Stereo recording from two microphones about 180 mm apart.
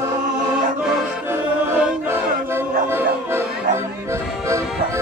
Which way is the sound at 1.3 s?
15° right (ahead or behind).